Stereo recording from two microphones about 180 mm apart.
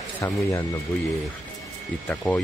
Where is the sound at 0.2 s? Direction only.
15° left (ahead or behind).